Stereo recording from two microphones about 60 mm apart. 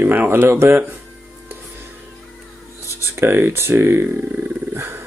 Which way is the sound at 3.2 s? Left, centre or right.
Right.